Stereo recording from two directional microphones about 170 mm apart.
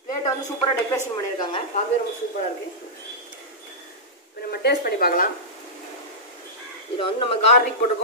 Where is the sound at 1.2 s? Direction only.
25° left (ahead or behind).